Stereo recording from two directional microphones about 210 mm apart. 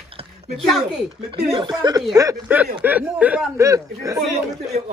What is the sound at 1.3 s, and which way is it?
Speech, 25° right (ahead or behind).